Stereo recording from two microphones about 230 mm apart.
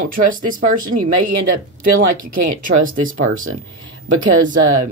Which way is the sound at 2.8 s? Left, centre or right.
Right.